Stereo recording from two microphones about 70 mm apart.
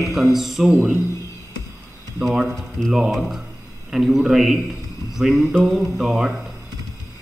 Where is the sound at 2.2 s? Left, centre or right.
Centre.